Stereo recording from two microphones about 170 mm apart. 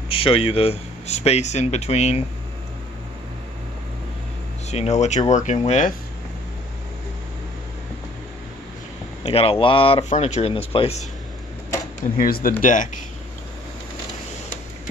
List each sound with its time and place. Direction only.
0.1 s speech: 35° left (ahead or behind)
4.6 s speech: 40° left (ahead or behind)
9.2 s speech: 35° left (ahead or behind)
12.2 s speech: 60° left (ahead or behind)
12.6 s speech: 50° left (ahead or behind)